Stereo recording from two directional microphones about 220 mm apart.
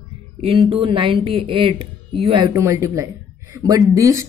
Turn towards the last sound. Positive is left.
turn(degrees=-15)  # may be behind; listen again after turning